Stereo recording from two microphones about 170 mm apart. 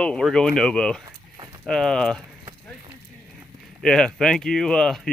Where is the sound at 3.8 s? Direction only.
5° left (ahead or behind).